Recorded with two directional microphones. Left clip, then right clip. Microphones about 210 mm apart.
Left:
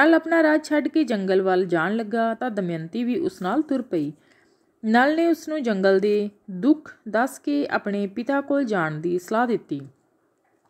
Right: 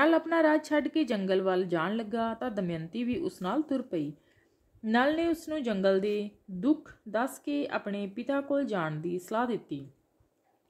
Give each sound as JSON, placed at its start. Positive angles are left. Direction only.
{"t": 0.0, "sound": "speech", "side_deg": 10}